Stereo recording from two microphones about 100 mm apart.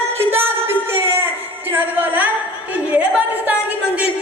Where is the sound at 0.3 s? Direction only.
20° right (ahead or behind).